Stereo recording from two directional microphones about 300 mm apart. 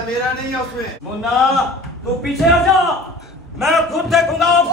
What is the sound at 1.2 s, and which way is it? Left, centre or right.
Speech, centre.